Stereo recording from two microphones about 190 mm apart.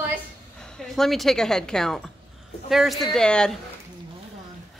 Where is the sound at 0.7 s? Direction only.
Centre (ahead or behind).